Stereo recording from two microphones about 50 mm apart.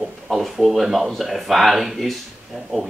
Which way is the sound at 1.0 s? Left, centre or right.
Centre.